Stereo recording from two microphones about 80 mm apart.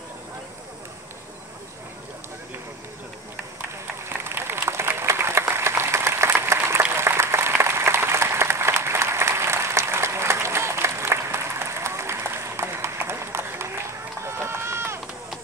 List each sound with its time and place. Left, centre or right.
4.2 s applause: right
14.2 s run: right